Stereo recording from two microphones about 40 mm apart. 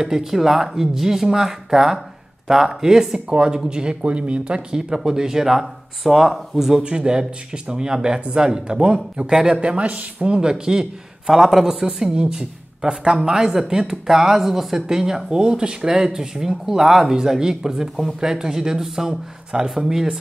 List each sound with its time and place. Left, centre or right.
0.0 s speech: centre
6.8 s speech: right
9.3 s speech: centre
9.6 s speech: right
10.2 s speech: right